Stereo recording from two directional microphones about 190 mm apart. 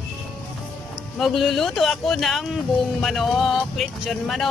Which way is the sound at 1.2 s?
Centre (ahead or behind).